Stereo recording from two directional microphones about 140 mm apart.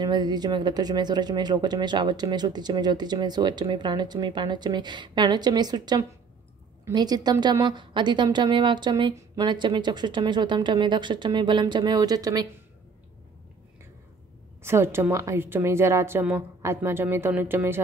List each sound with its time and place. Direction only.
0.0 s speech: 30° right (ahead or behind)
14.6 s a woman's voice: 15° right (ahead or behind)